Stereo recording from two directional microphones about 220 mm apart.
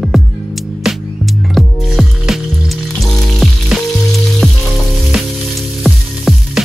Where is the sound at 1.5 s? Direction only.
Centre (ahead or behind).